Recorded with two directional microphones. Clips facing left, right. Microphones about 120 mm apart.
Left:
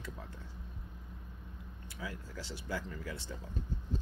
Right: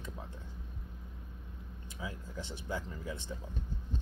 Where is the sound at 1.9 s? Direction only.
20° right (ahead or behind).